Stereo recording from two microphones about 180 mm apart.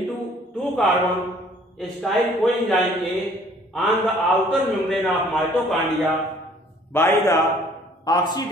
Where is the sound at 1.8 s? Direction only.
Centre (ahead or behind).